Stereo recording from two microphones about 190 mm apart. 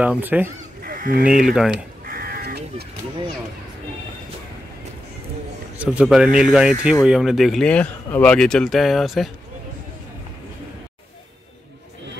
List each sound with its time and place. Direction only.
0.0 s speech: 10° right (ahead or behind)
0.8 s goose: 50° right (ahead or behind)
1.2 s speech: centre (ahead or behind)
2.0 s crow: 50° right (ahead or behind)
5.8 s speech: 5° right (ahead or behind)